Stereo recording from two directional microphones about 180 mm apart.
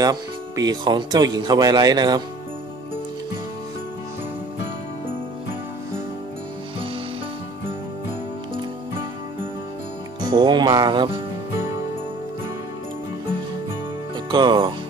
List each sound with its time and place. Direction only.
0.0 s speech: 20° right (ahead or behind)
10.2 s speech: 25° right (ahead or behind)
14.3 s speech: 25° right (ahead or behind)